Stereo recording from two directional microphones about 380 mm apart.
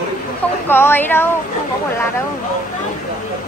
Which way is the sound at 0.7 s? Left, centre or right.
Centre.